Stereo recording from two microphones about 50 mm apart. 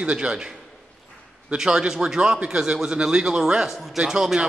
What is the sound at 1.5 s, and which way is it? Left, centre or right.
A man's voice, centre.